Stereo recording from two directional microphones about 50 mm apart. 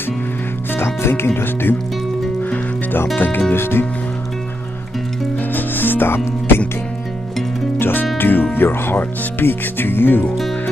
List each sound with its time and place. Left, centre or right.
0.7 s speech: left
2.5 s music: left
3.2 s speech: left
3.5 s speech: left
5.5 s music: left
7.8 s music: left
8.2 s speech: left